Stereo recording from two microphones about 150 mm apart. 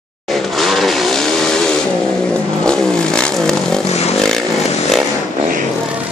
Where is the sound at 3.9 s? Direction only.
45° left (ahead or behind).